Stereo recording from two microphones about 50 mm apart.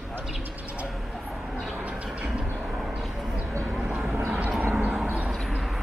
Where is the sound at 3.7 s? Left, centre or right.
Centre.